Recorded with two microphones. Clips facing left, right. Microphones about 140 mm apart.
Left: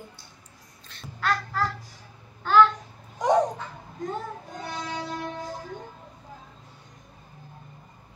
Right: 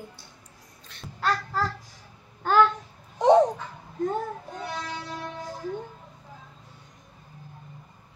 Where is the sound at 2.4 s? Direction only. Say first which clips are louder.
Left 1 dB; 45° right (ahead or behind).